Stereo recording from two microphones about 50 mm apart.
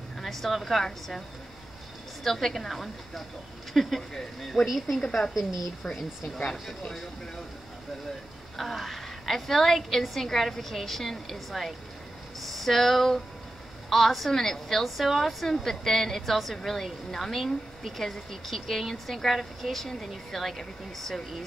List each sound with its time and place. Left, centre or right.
0.2 s a woman's voice: centre
2.2 s a woman's voice: centre
5.0 s a woman's voice: centre
8.5 s a woman's voice: centre